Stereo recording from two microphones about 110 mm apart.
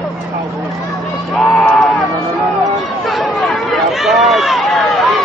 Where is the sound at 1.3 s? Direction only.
5° left (ahead or behind).